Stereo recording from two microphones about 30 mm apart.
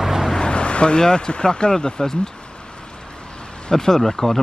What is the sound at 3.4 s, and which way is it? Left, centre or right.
Speech, centre.